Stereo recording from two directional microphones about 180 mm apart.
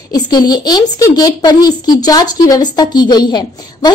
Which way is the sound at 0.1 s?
20° left (ahead or behind).